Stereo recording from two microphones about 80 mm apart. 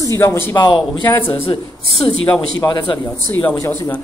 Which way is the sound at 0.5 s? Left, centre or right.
Left.